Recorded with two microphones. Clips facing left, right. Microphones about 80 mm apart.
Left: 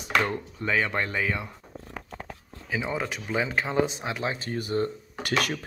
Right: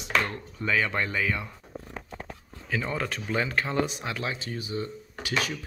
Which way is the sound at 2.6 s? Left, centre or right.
Centre.